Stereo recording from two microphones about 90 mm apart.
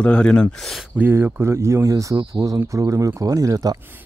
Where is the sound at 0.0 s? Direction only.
15° left (ahead or behind).